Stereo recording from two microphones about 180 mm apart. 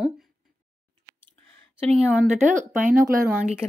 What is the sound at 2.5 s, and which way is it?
Speech, 45° right (ahead or behind).